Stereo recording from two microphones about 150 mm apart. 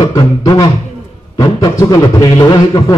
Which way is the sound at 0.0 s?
25° left (ahead or behind).